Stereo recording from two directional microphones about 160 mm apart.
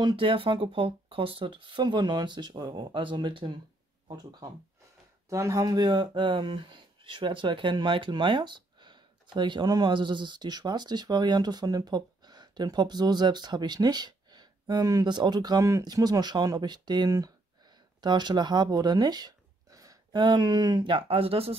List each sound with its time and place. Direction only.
0.0 s speech: 30° right (ahead or behind)